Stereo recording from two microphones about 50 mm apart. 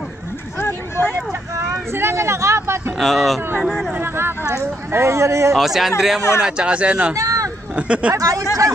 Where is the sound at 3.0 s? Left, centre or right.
Centre.